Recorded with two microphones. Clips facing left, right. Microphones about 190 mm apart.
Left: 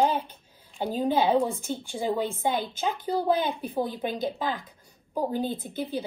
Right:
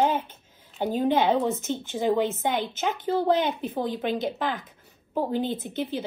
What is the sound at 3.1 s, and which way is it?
Speech, 20° right (ahead or behind).